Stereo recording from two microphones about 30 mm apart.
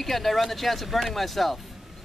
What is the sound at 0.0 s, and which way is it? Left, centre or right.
Speech, centre.